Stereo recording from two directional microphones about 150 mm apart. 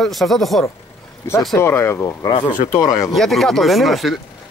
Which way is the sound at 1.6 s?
15° left (ahead or behind).